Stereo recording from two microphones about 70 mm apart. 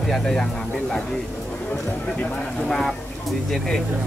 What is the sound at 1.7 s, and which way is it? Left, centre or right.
Speech, left.